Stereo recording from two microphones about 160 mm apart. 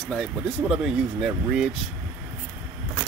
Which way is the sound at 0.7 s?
5° right (ahead or behind).